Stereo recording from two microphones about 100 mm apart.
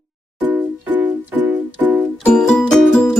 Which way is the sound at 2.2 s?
10° left (ahead or behind).